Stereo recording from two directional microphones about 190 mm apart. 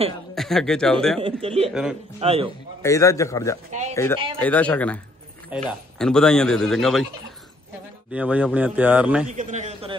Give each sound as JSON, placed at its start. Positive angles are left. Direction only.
{"t": 0.3, "sound": "a man's voice", "side_deg": 0}
{"t": 1.2, "sound": "a man's voice", "side_deg": -30}
{"t": 1.7, "sound": "speech", "side_deg": -5}
{"t": 2.1, "sound": "a man's voice", "side_deg": -30}
{"t": 2.8, "sound": "a man's voice", "side_deg": 15}
{"t": 8.1, "sound": "speech", "side_deg": -5}
{"t": 9.3, "sound": "a man's voice", "side_deg": -40}